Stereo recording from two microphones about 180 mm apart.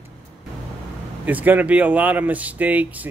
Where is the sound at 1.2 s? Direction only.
10° right (ahead or behind).